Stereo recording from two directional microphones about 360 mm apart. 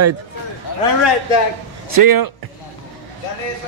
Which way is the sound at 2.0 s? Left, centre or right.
Right.